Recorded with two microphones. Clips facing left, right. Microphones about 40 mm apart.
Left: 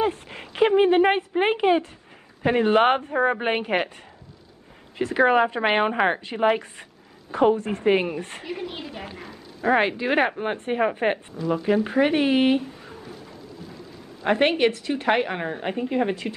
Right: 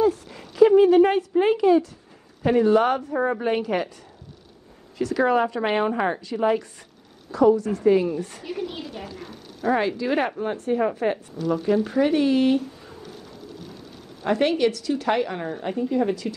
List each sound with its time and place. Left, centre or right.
0.0 s a sound: left
2.4 s speech: left
4.9 s speech: left
7.2 s a woman's voice: left
7.9 s speech: left
8.5 s speech: left
9.0 s speech: left
11.3 s a woman's voice: left
13.6 s a sound: right
14.2 s a woman's voice: left